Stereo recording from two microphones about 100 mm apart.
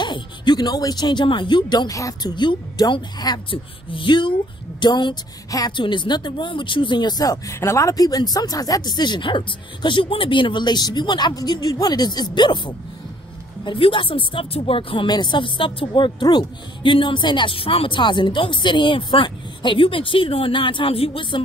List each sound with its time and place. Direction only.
0.0 s speech: 50° left (ahead or behind)
1.9 s speech: 35° left (ahead or behind)
2.3 s speech: 50° left (ahead or behind)
3.4 s speech: 60° left (ahead or behind)